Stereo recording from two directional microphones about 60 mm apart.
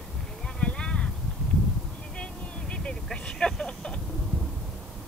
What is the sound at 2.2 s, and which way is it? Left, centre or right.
Vehicle, centre.